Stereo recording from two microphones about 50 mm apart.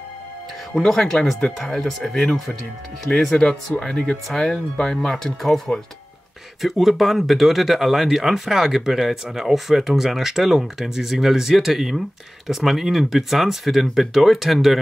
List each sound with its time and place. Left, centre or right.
0.7 s speech: centre
6.6 s speech: centre